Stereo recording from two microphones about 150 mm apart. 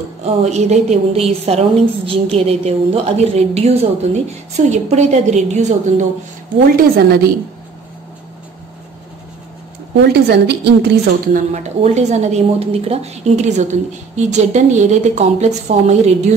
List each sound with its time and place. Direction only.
0.2 s a woman's voice: 45° right (ahead or behind)
6.8 s a woman's voice: 90° right
10.1 s a woman's voice: 90° right
11.5 s a woman's voice: 50° right (ahead or behind)